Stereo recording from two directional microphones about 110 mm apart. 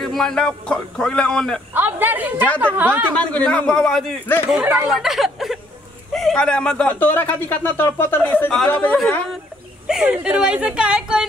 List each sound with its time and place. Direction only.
0.0 s speech: 5° left (ahead or behind)
1.7 s a woman's voice: 20° right (ahead or behind)
3.3 s speech: 10° left (ahead or behind)
4.3 s speech: 20° left (ahead or behind)
4.8 s speech: centre (ahead or behind)
9.8 s speech: 5° right (ahead or behind)